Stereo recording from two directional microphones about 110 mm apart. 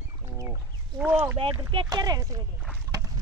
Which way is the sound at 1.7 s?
45° right (ahead or behind).